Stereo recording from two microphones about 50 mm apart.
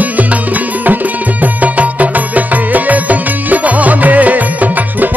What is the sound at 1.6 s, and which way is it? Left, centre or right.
Music, right.